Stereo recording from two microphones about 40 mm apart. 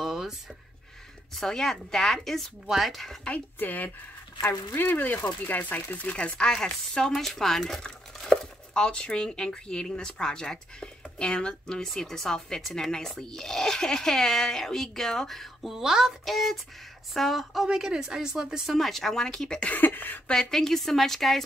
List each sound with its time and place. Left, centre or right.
0.0 s a sound: centre
1.3 s speech: centre
2.6 s a woman's voice: centre
3.5 s speech: left
4.4 s speech: left
4.8 s speech: left
6.1 s speech: left; by 7.8 s centre
8.3 s speech: centre
15.6 s speech: centre
16.3 s a woman's voice: centre
17.6 s speech: centre
18.8 s speech: centre
19.7 s a sound: left
20.3 s speech: centre